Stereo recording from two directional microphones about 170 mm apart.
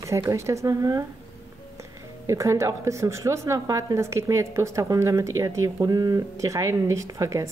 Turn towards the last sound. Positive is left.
turn(degrees=-20)  # may be behind; listen again after turning